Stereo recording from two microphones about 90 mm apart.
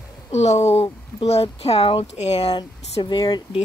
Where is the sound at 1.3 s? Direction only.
90° left.